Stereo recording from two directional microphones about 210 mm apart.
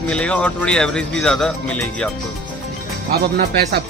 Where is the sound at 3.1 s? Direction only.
50° right (ahead or behind).